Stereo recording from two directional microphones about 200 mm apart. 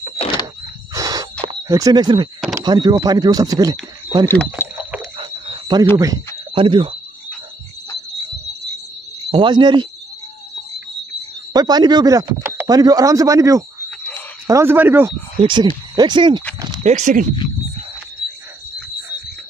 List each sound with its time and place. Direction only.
0.0 s a sound: 25° left (ahead or behind)
0.9 s a sound: 15° right (ahead or behind)
1.4 s speech: 20° right (ahead or behind)
4.6 s a sound: 15° left (ahead or behind)
5.1 s cricket: 25° right (ahead or behind)
6.5 s speech: 25° right (ahead or behind)
9.3 s speech: 25° right (ahead or behind)
11.5 s speech: 20° right (ahead or behind)
13.8 s frog: 5° left (ahead or behind)
14.5 s speech: 10° right (ahead or behind)
15.3 s speech: 25° right (ahead or behind)
16.8 s speech: 35° right (ahead or behind)